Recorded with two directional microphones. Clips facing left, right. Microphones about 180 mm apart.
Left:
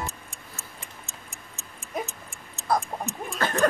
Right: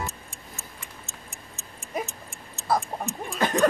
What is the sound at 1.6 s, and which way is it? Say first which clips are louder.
Tick-tock: right 1 dB; centre (ahead or behind).